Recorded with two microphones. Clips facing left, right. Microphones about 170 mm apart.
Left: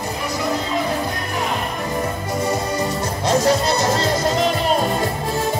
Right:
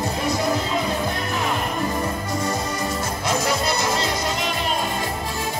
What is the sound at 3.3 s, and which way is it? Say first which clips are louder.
Music: left 6 dB; 40° left (ahead or behind).